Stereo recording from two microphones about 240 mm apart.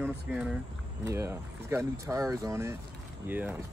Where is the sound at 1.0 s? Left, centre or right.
Centre.